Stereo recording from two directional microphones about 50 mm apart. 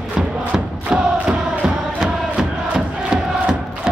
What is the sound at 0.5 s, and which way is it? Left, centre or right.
Chant, right.